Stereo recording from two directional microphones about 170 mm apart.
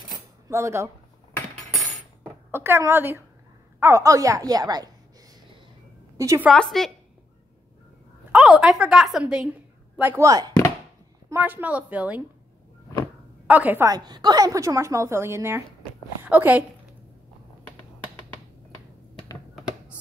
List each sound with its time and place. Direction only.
0.1 s cutlery: 15° right (ahead or behind)
2.2 s a woman's voice: 15° right (ahead or behind)
6.1 s a woman's voice: 15° right (ahead or behind)
6.5 s a woman's voice: 5° left (ahead or behind)
8.3 s a woman's voice: 5° right (ahead or behind)
13.5 s a woman's voice: 10° right (ahead or behind)
19.5 s a sound: 5° right (ahead or behind)